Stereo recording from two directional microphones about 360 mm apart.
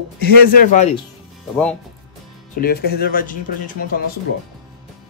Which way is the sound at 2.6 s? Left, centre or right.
Left.